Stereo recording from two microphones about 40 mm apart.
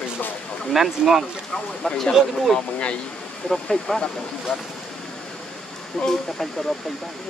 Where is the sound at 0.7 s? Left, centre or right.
Centre.